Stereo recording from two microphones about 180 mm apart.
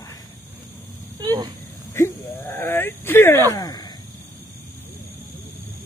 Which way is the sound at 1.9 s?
15° left (ahead or behind).